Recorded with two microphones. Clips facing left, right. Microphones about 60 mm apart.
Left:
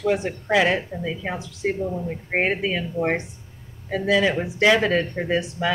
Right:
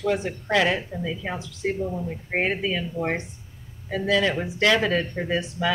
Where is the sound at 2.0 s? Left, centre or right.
Centre.